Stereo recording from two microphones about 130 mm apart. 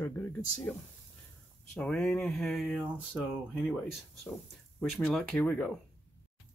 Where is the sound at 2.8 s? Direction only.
15° right (ahead or behind).